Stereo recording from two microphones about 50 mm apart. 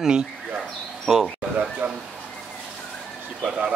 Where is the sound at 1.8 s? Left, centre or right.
Right.